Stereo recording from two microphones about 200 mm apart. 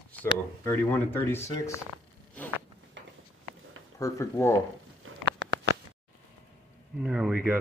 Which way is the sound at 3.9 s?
15° left (ahead or behind).